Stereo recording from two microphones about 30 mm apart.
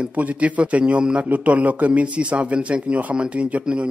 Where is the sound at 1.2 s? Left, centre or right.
Right.